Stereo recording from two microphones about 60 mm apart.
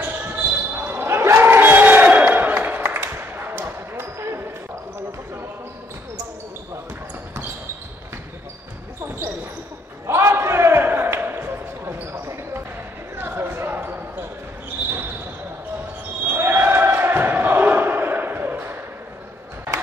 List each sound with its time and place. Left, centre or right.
0.0 s basketball bounce: right
2.0 s crowd: right
2.8 s basketball bounce: right
10.0 s basketball bounce: right
16.3 s basketball bounce: right